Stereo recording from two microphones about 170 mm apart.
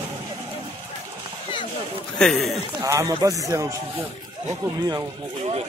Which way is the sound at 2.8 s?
20° right (ahead or behind).